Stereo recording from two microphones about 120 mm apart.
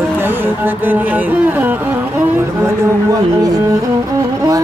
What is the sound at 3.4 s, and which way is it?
Music, 30° right (ahead or behind).